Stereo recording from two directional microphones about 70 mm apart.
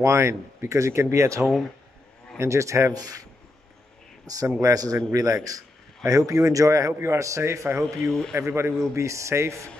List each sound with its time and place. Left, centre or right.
0.0 s speech: right
2.9 s speech: right
4.5 s speech: right
6.9 s a man's voice: right
7.8 s speech: centre
8.4 s a man's voice: right